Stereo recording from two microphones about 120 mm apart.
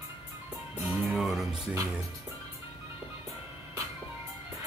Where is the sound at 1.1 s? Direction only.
Centre (ahead or behind).